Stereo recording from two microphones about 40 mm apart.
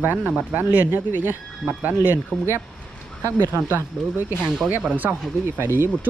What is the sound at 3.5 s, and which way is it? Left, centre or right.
Speech, right.